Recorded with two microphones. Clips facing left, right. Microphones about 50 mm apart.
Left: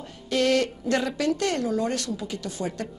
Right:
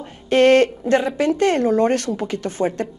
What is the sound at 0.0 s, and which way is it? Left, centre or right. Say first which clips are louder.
A woman's voice: right 9 dB; right.